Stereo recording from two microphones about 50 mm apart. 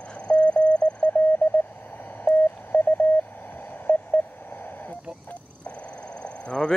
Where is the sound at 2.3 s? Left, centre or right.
Left.